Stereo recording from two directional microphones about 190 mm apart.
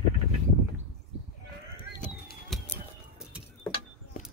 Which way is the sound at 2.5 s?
Centre (ahead or behind).